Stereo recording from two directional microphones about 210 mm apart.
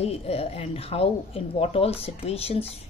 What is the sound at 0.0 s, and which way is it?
Speech, 30° left (ahead or behind).